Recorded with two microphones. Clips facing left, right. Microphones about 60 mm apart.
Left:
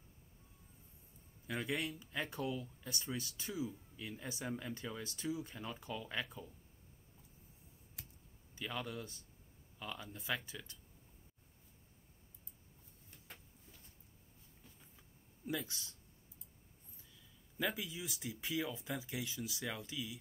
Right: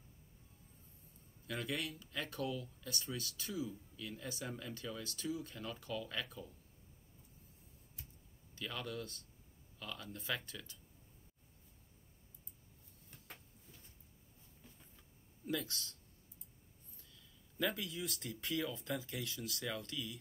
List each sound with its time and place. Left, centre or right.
1.5 s speech: left
8.0 s computer keyboard: left
8.5 s speech: centre
15.4 s speech: centre